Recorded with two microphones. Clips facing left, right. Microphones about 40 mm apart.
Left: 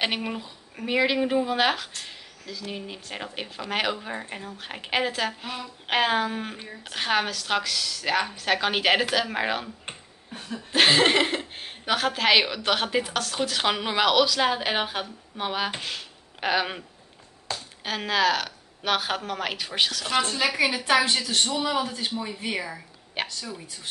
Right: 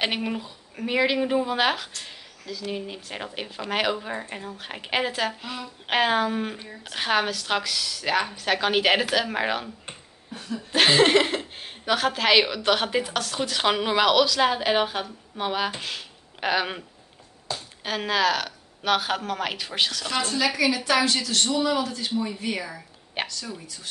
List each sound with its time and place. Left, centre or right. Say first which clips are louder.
0.0 s a woman's voice: right 1 dB; centre
9.8 s a sound: left 1 dB; left
10.7 s a woman's voice: right 1 dB; centre
17.8 s a woman's voice: even; centre
20.1 s a woman's voice: left 1 dB; left
22.1 s speech: right 2 dB; centre
23.2 s speech: even; centre